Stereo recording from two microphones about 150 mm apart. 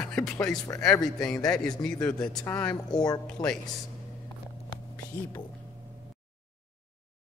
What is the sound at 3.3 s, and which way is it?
Speech, 5° left (ahead or behind).